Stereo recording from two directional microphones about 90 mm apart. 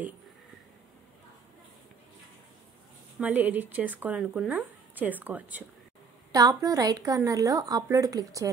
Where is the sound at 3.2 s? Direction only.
20° right (ahead or behind).